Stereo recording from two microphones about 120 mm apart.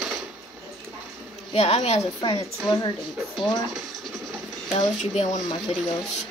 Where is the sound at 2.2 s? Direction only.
35° left (ahead or behind).